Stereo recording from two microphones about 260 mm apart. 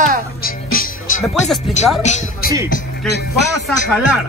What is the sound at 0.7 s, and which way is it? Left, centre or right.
Music, left.